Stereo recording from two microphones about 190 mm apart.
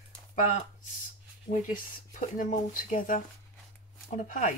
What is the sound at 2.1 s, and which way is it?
Speech, 40° left (ahead or behind).